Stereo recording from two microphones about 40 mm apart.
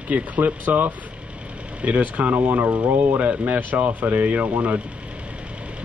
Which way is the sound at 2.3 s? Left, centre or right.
Right.